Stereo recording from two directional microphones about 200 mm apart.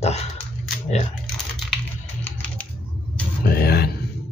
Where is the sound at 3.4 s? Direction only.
50° left (ahead or behind).